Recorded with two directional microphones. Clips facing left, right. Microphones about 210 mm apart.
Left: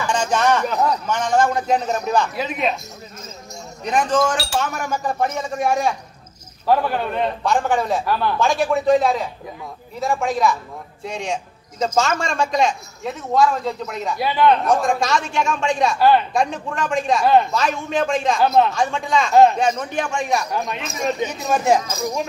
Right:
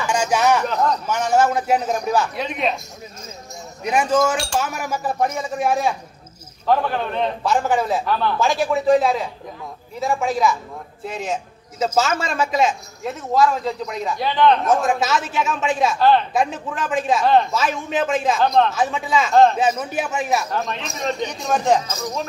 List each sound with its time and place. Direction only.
0.0 s a sound: 10° right (ahead or behind)
0.7 s speech: 10° left (ahead or behind)
1.0 s a man's voice: 10° right (ahead or behind)
2.3 s speech: 5° left (ahead or behind)
3.8 s a man's voice: 10° right (ahead or behind)
16.0 s speech: 10° left (ahead or behind)
16.3 s speech: 5° right (ahead or behind)
18.4 s speech: 5° left (ahead or behind)
18.7 s speech: 5° right (ahead or behind)